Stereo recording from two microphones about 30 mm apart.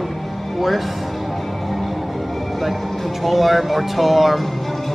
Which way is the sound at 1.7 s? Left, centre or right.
Centre.